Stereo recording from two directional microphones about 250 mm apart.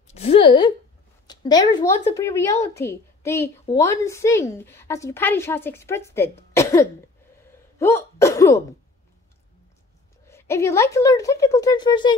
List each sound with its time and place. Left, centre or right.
0.1 s a woman's voice: left
6.5 s cough: centre
7.8 s throat clearing: centre
10.2 s a woman's voice: centre